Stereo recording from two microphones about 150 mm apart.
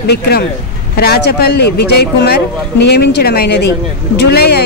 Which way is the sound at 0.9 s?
90° left.